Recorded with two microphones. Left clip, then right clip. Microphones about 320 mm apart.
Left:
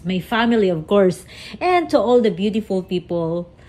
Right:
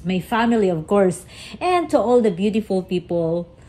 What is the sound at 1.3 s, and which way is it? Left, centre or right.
Speech, left.